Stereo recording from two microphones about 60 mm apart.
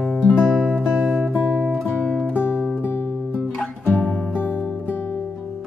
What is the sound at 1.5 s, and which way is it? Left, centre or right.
Guitar, centre.